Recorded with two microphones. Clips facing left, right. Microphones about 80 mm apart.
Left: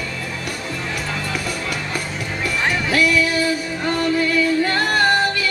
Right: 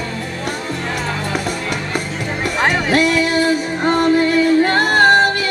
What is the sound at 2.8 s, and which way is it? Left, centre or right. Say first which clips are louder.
Music: right 3 dB; right.